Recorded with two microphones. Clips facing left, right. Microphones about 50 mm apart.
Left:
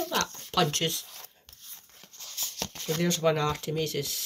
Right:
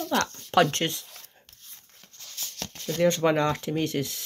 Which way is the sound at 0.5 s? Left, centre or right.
Right.